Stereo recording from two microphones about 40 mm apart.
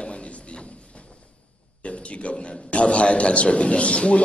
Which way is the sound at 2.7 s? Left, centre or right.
Left.